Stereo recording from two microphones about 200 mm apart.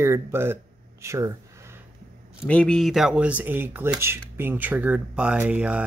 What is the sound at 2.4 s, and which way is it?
Speech, 5° left (ahead or behind).